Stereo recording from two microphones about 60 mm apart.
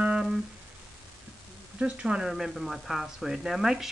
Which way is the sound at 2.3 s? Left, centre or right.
Centre.